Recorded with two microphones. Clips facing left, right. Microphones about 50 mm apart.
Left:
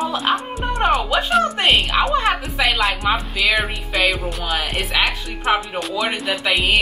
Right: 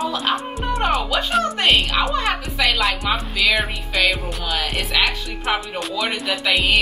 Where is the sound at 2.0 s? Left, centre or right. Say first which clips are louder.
Left 3 dB; left.